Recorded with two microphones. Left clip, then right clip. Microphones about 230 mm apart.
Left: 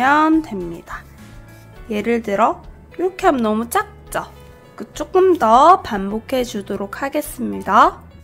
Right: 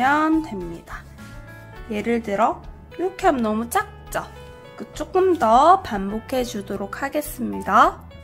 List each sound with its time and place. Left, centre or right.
0.0 s a woman's voice: centre